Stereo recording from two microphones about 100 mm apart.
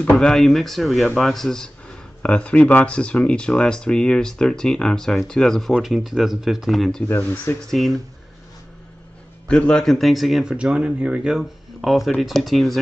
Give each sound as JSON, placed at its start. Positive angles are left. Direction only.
{"t": 0.1, "sound": "speech", "side_deg": 5}
{"t": 7.1, "sound": "speech", "side_deg": 25}
{"t": 7.7, "sound": "speech", "side_deg": 0}
{"t": 9.5, "sound": "speech", "side_deg": 10}
{"t": 10.5, "sound": "speech", "side_deg": -10}